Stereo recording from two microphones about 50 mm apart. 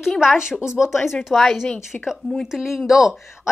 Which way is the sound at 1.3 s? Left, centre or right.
Centre.